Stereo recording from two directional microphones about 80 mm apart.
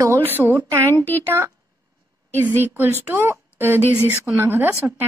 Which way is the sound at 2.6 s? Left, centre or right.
Right.